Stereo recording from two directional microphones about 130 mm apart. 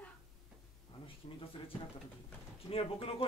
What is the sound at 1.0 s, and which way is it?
Speech, 45° left (ahead or behind).